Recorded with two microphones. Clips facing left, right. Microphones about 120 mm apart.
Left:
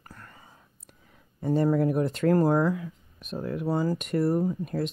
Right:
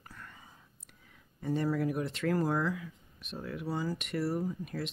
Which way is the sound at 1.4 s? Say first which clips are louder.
Left 7 dB; 40° left (ahead or behind).